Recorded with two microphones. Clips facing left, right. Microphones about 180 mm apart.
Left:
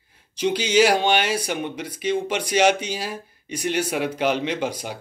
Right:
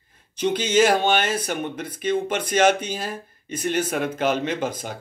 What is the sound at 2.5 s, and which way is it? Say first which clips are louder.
Speech: even; 10° left (ahead or behind).